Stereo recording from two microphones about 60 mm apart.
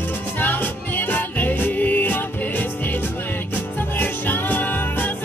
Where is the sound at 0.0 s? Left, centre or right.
Left.